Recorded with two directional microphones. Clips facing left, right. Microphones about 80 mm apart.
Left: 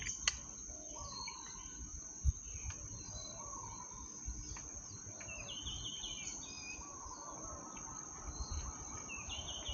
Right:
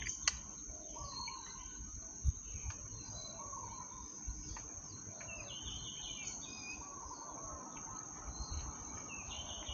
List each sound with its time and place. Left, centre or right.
0.3 s cricket: centre
7.2 s chicken: centre
9.1 s a sound: centre